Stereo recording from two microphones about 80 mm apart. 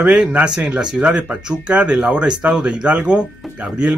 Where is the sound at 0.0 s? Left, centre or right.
Centre.